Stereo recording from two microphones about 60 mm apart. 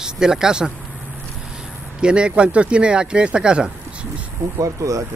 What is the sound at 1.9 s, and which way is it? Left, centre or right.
Speech, centre.